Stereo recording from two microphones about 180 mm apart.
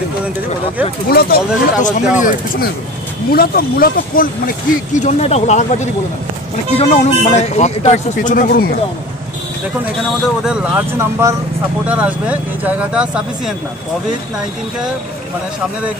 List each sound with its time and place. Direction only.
1.0 s speech: 55° left (ahead or behind)
10.4 s speech: 5° right (ahead or behind)